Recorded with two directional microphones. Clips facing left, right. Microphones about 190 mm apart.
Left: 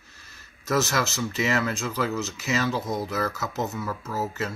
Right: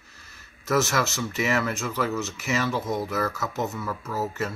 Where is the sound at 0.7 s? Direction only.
20° left (ahead or behind).